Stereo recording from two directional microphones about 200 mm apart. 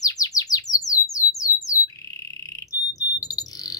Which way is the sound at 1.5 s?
10° right (ahead or behind).